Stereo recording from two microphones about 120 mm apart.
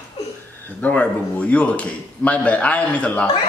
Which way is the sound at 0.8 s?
10° left (ahead or behind).